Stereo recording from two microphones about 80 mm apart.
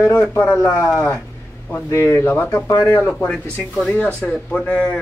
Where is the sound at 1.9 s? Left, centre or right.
Left.